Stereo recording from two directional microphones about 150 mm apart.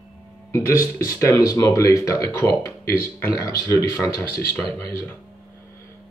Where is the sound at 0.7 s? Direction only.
20° left (ahead or behind).